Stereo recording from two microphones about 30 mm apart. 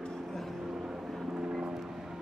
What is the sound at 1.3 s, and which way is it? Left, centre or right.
Vehicle, right.